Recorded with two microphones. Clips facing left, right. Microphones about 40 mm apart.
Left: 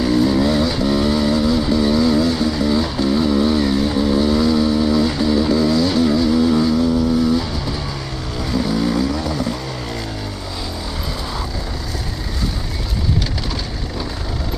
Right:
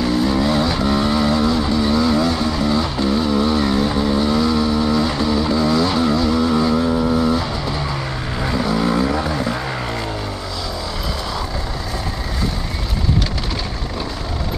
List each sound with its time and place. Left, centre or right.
0.0 s vehicle: centre
6.8 s vehicle: right
7.2 s vehicle: centre; by 9.6 s right